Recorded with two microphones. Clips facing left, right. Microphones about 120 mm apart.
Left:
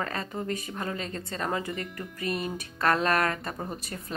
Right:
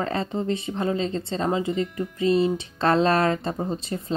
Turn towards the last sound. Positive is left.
turn(degrees=-25)  # may be behind; listen again after turning